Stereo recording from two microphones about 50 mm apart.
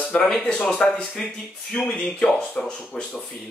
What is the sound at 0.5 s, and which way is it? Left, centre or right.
Speech, left.